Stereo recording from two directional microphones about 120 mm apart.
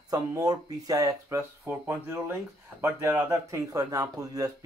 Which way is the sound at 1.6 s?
15° right (ahead or behind).